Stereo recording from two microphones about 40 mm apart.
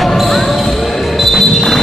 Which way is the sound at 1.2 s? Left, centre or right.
Centre.